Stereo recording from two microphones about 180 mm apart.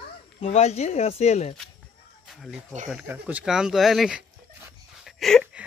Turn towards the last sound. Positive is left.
turn(degrees=0)  # may be behind; listen again after turning